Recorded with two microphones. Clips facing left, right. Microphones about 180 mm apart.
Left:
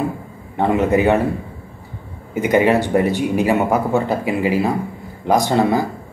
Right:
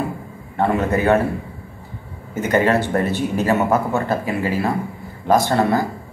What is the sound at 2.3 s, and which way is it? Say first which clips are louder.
A man's voice: left 2 dB; 15° left (ahead or behind).